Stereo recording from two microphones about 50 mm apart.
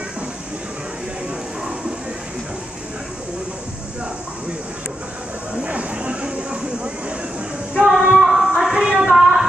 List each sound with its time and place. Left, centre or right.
5.7 s a sound: right
7.7 s female singing: centre
9.0 s music: centre